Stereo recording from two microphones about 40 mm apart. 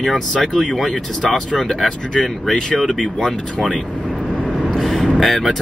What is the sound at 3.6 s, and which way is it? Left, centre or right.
Speech, left.